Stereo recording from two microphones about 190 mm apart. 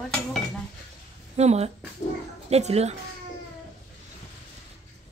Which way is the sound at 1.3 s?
35° right (ahead or behind).